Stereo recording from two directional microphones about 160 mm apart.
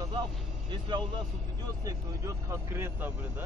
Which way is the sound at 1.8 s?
20° right (ahead or behind).